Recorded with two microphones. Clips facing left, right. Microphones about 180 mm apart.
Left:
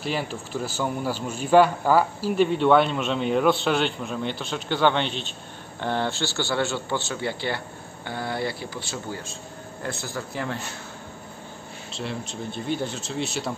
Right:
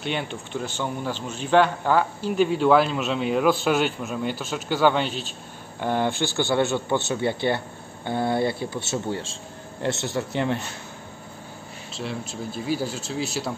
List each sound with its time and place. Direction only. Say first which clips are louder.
0.0 s a man's voice: even; centre (ahead or behind); by 10.6 s 20° right (ahead or behind)
11.9 s a man's voice: right 1 dB; centre (ahead or behind)